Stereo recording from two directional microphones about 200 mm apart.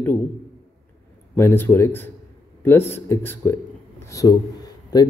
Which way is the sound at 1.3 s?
10° left (ahead or behind).